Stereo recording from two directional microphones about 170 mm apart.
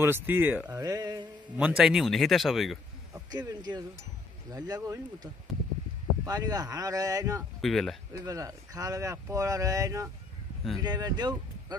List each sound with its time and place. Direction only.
0.0 s speech: 10° right (ahead or behind)
0.7 s mantra: 25° right (ahead or behind)
1.6 s speech: 5° right (ahead or behind)
3.3 s speech: 25° right (ahead or behind)
7.6 s speech: centre (ahead or behind)
8.3 s speech: 20° right (ahead or behind)